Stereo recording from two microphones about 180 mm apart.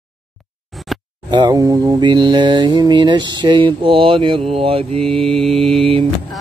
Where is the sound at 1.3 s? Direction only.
20° right (ahead or behind).